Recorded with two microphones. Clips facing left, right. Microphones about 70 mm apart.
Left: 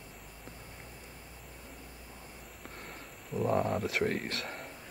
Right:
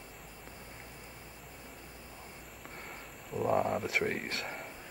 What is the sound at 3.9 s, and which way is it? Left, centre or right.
Speech, right.